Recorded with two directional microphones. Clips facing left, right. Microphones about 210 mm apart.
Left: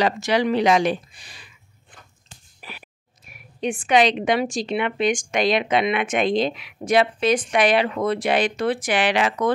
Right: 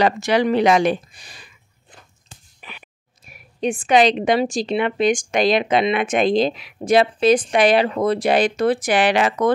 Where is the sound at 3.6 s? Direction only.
35° right (ahead or behind).